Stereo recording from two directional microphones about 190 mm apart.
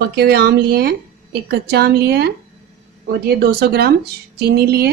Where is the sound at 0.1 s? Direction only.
55° right (ahead or behind).